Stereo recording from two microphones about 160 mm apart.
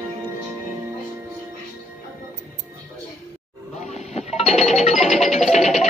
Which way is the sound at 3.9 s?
40° left (ahead or behind).